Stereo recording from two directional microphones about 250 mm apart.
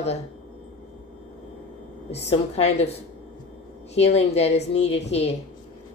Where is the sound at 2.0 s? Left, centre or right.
Left.